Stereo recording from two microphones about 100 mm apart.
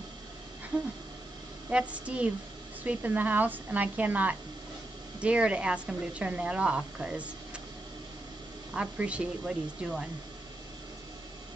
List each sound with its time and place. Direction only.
1.7 s speech: 10° right (ahead or behind)
8.7 s speech: 10° right (ahead or behind)